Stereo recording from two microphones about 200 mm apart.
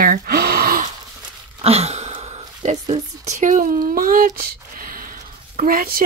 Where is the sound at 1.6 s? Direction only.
30° right (ahead or behind).